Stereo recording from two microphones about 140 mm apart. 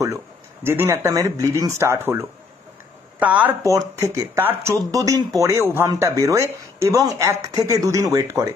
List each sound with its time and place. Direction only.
0.7 s speech: 15° right (ahead or behind)
3.6 s speech: 25° right (ahead or behind)